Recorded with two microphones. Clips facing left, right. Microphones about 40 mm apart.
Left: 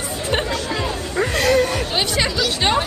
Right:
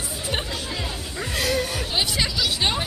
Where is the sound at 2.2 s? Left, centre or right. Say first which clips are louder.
Left 4 dB; left.